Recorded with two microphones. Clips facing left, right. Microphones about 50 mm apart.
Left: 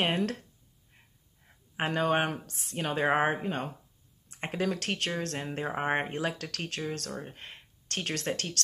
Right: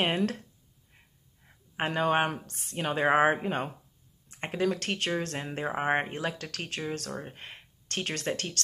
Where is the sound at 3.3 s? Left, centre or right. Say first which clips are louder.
Right 3 dB; centre.